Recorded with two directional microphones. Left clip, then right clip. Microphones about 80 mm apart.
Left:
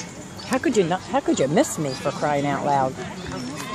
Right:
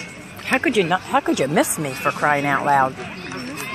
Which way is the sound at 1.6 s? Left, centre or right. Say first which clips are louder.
Right 1 dB; centre.